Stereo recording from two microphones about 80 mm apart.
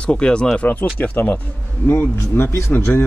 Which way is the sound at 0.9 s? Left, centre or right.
Left.